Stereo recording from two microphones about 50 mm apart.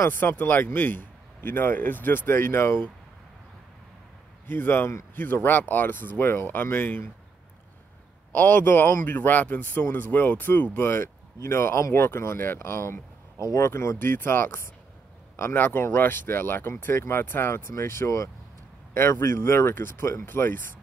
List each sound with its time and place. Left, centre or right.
0.4 s speech: left
2.4 s speech: left
4.5 s speech: left
8.3 s speech: left
10.8 s speech: left
13.4 s speech: left
14.0 s speech: left
18.9 s speech: left